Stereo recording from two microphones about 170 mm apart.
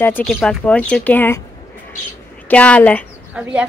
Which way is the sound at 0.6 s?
5° left (ahead or behind).